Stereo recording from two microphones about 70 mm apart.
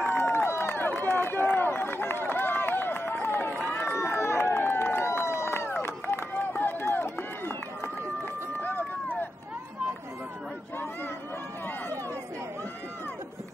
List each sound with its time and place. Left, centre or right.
0.0 s run: left